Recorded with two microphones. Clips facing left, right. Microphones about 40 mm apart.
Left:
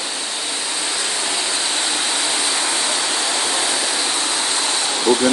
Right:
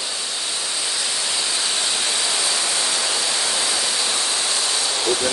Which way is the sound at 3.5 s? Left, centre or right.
Left.